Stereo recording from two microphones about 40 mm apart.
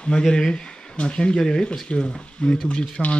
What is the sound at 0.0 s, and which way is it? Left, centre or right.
Speech, left.